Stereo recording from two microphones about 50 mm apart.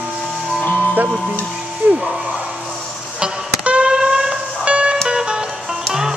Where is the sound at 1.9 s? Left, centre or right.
Right.